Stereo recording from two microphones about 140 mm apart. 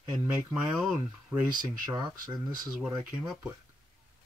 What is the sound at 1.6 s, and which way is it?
Speech, 30° right (ahead or behind).